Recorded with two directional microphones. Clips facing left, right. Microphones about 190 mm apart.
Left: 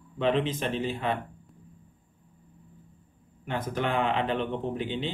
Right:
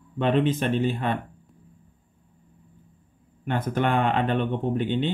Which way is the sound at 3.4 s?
60° right (ahead or behind).